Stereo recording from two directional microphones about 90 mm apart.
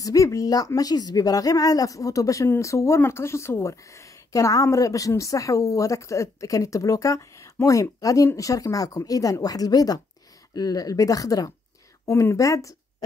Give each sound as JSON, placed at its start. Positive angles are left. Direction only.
{"t": 0.0, "sound": "speech", "side_deg": 40}